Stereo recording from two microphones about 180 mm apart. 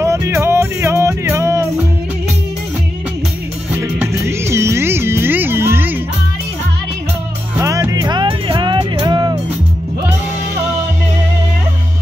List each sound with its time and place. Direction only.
0.0 s music: 15° right (ahead or behind)
3.8 s music: 15° right (ahead or behind)
7.5 s music: 15° right (ahead or behind)